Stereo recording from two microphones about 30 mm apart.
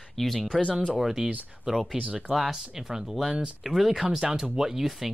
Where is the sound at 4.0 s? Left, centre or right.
Right.